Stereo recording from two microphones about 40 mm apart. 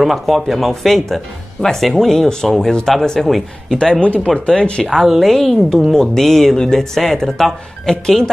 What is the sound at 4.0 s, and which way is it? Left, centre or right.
Speech, left.